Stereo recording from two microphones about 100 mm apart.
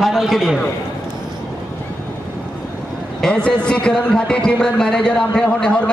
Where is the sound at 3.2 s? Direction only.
10° left (ahead or behind).